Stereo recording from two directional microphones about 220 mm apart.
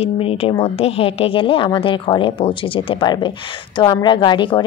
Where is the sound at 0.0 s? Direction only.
25° left (ahead or behind).